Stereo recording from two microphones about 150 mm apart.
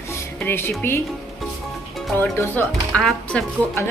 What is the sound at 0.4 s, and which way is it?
Speech, 15° left (ahead or behind).